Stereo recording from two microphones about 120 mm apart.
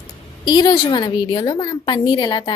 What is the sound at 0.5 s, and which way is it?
A woman's voice, 35° left (ahead or behind).